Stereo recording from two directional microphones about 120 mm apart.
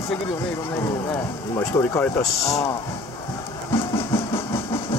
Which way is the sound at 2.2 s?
65° left (ahead or behind).